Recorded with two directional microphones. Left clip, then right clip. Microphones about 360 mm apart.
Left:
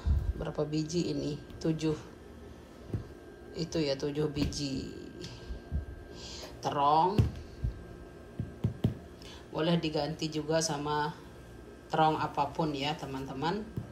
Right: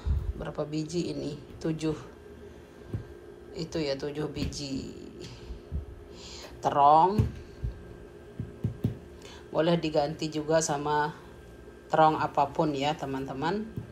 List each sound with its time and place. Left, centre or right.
0.0 s a woman's voice: centre
3.6 s speech: centre
6.2 s music: centre
9.5 s a man's voice: centre